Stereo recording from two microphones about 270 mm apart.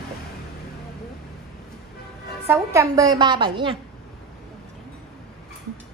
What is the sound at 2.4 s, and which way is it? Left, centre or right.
A woman's voice, centre.